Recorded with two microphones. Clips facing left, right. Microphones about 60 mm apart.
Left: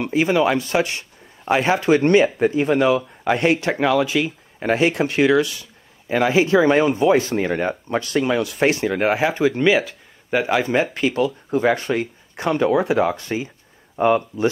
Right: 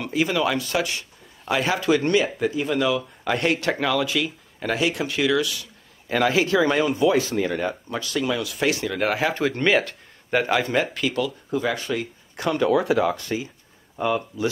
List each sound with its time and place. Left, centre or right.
0.0 s speech: left
3.0 s speech: left
6.0 s speech: centre
9.3 s speech: centre
10.9 s speech: left